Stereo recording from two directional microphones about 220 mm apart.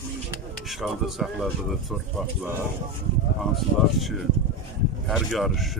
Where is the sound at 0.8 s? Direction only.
Centre (ahead or behind).